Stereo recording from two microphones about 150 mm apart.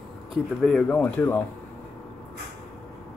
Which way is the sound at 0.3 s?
5° left (ahead or behind).